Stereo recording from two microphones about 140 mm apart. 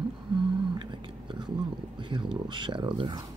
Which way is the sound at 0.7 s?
35° right (ahead or behind).